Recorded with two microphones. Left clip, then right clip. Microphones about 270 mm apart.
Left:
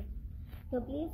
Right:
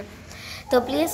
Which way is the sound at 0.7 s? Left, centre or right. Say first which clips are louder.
Right 16 dB; right.